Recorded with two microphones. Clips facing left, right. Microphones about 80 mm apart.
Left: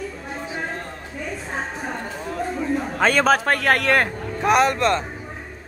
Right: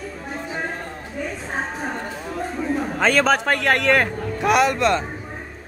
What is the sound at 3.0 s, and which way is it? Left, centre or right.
Speech, centre.